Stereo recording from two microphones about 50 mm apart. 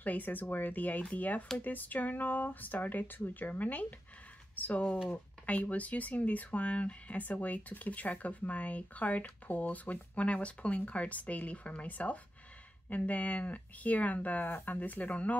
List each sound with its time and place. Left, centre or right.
0.0 s speech: left